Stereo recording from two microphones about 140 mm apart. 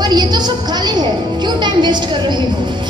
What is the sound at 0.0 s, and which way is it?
Music, 30° right (ahead or behind).